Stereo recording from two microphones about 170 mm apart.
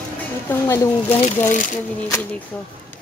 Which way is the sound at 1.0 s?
35° left (ahead or behind).